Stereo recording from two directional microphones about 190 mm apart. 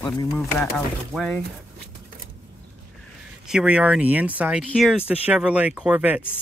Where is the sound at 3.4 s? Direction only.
5° right (ahead or behind).